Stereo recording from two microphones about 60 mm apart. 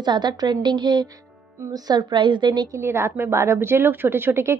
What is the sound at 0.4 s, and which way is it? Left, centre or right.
Speech, right.